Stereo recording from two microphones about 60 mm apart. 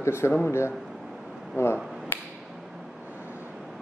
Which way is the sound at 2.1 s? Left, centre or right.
Left.